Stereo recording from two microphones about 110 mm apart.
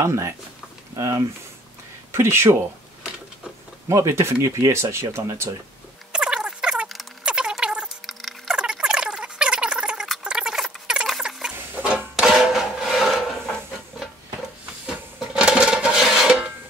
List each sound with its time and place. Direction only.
0.0 s speech: 25° right (ahead or behind)
3.9 s speech: 25° right (ahead or behind)
6.1 s a sound: 10° right (ahead or behind)
10.0 s rodents: 5° right (ahead or behind)
11.5 s music: 15° right (ahead or behind)
14.9 s dishes: 10° right (ahead or behind)